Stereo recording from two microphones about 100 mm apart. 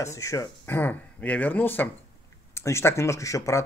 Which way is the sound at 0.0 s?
30° left (ahead or behind).